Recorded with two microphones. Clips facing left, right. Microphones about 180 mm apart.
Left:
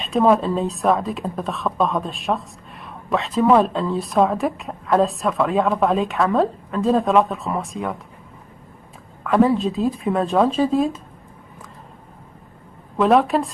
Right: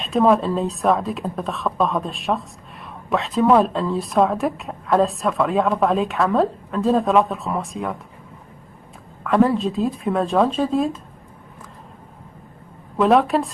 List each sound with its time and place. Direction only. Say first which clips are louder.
0.0 s a woman's voice: even; centre (ahead or behind)
9.2 s a woman's voice: left 1 dB; centre (ahead or behind)
12.9 s a woman's voice: even; centre (ahead or behind)